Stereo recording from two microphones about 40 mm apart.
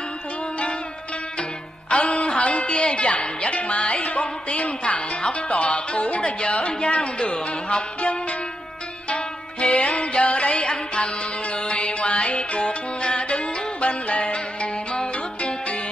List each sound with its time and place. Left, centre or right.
1.9 s music: left
3.1 s speech: left
6.9 s music: left